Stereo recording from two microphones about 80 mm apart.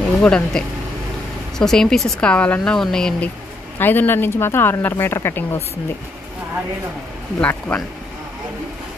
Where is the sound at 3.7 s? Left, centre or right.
Left.